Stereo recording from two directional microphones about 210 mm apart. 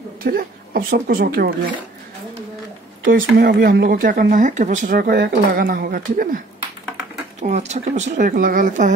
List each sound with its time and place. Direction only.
0.2 s a woman's voice: 45° right (ahead or behind)
3.1 s speech: 45° right (ahead or behind)
7.4 s speech: 30° right (ahead or behind)